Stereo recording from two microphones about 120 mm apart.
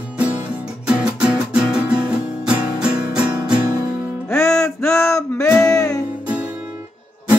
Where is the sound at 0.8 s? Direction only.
10° right (ahead or behind).